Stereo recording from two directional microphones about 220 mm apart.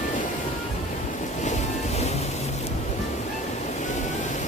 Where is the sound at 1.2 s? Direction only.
35° left (ahead or behind).